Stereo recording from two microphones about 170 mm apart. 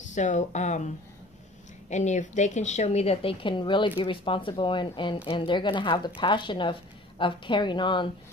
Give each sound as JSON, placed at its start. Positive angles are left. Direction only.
{"t": 0.1, "sound": "a woman's voice", "side_deg": 45}